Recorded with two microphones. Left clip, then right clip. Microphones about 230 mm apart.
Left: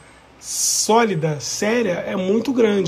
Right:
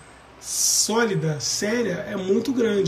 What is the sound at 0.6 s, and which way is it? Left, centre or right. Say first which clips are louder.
Speech: left 5 dB; centre.